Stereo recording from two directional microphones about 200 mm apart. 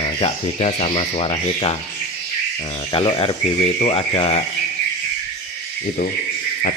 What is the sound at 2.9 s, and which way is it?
Speech, 25° left (ahead or behind).